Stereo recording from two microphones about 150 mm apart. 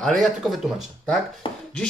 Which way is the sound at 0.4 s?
Centre (ahead or behind).